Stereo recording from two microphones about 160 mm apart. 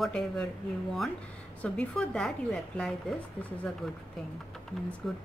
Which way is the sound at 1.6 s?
5° left (ahead or behind).